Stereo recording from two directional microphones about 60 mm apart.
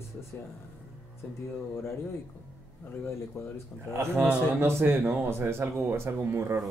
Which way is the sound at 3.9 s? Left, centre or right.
Right.